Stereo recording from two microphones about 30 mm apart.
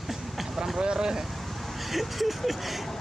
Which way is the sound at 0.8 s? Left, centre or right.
Right.